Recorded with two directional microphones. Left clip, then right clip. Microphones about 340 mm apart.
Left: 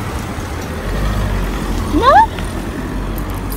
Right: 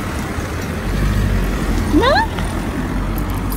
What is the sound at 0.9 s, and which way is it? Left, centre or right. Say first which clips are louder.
Vehicle: left 2 dB; centre.